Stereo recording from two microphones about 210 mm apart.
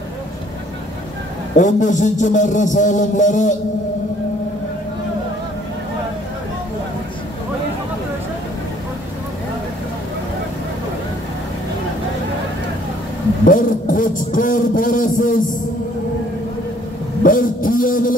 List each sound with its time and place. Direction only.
1.6 s music: 35° left (ahead or behind)
13.5 s a sound: 40° left (ahead or behind)
17.2 s music: 40° left (ahead or behind)